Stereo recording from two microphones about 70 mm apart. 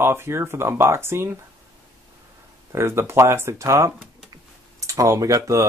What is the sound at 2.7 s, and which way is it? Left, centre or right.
Speech, right.